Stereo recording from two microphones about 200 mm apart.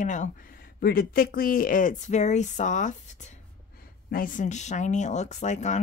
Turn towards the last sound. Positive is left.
turn(degrees=35)  # may be behind; listen again after turning